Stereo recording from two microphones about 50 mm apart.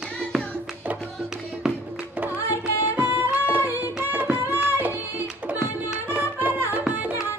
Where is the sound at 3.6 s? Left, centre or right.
Right.